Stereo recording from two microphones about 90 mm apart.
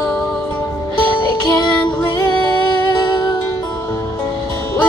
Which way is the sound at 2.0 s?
45° left (ahead or behind).